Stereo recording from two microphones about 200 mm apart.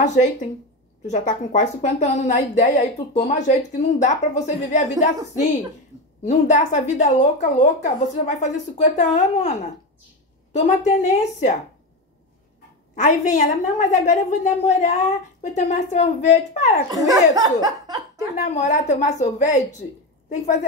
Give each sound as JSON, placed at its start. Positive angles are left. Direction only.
{"t": 0.0, "sound": "a woman's voice", "side_deg": 35}
{"t": 6.2, "sound": "a woman's voice", "side_deg": 35}
{"t": 12.9, "sound": "a woman's voice", "side_deg": 40}
{"t": 16.9, "sound": "speech", "side_deg": -15}
{"t": 18.3, "sound": "a woman's voice", "side_deg": 40}